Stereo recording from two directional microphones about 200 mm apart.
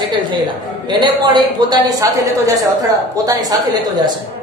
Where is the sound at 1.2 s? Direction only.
20° right (ahead or behind).